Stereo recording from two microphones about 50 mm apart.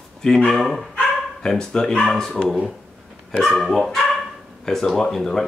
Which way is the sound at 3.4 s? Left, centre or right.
Centre.